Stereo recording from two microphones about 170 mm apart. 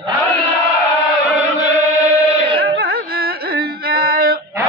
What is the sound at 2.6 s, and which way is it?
Music, 65° right (ahead or behind).